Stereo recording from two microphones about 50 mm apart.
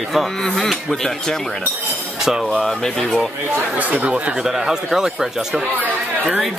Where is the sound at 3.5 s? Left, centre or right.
Right.